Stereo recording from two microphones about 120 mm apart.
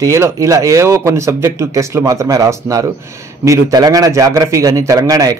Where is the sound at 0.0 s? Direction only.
25° right (ahead or behind).